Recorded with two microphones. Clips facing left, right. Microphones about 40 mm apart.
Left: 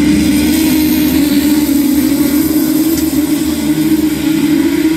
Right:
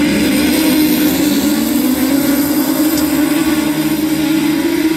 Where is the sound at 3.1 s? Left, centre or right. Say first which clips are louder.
Even; right.